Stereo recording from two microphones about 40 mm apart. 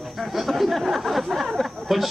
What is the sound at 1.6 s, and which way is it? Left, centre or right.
Chatter, centre.